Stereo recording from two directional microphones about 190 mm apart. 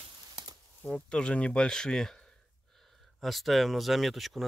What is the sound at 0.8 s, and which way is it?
Speech, 5° left (ahead or behind).